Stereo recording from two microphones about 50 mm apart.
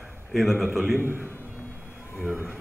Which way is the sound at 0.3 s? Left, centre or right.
Centre.